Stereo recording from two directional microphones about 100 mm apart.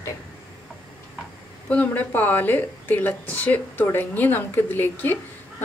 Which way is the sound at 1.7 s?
15° left (ahead or behind).